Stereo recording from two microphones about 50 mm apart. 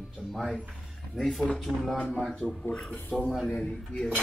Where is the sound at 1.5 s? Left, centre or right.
Centre.